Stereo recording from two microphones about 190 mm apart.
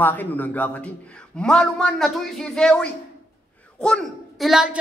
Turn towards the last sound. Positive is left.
turn(degrees=-5)  # may be behind; listen again after turning